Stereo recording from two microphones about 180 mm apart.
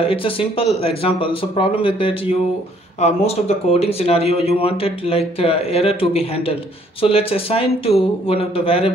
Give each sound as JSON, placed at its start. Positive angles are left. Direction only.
{"t": 0.0, "sound": "speech", "side_deg": 30}